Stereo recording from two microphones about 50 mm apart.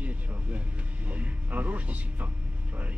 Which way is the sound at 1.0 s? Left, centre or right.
Right.